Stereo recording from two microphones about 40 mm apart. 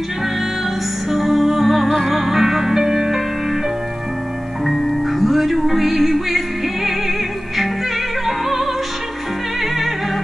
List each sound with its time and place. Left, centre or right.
1.1 s music: centre
1.9 s music: centre
2.1 s music: centre
4.6 s music: centre
8.3 s music: centre